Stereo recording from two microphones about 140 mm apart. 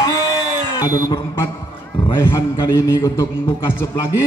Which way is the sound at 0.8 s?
25° left (ahead or behind).